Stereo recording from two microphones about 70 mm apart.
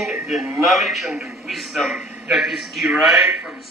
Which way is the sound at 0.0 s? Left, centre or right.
Centre.